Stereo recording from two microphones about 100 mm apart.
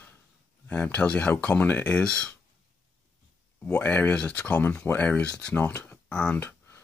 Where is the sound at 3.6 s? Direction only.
15° left (ahead or behind).